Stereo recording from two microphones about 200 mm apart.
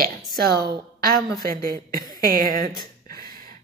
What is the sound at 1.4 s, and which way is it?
A woman's voice, 45° right (ahead or behind).